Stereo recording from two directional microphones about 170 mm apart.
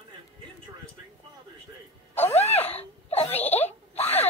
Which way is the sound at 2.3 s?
35° left (ahead or behind).